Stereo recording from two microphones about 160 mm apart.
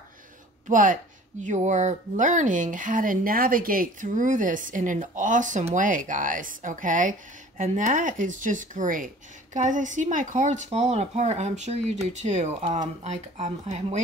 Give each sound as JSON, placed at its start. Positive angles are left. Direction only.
{"t": 0.7, "sound": "speech", "side_deg": -55}